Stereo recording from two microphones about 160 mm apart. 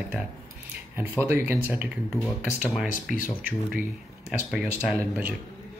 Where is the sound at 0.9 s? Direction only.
15° right (ahead or behind).